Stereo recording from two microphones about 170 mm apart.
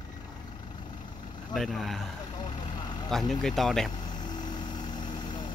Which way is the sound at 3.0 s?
Centre (ahead or behind).